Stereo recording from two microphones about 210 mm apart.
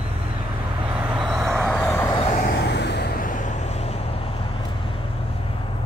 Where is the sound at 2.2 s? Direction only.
35° left (ahead or behind).